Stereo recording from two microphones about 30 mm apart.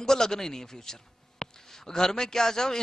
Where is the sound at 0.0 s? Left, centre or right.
Centre.